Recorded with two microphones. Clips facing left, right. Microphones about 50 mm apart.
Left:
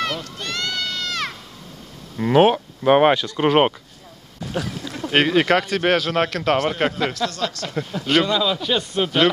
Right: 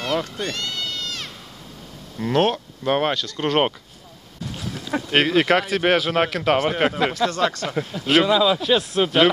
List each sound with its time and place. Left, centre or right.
0.6 s crowd: left
2.1 s speech: centre
5.1 s speech: centre
7.2 s speech: right
7.6 s speech: centre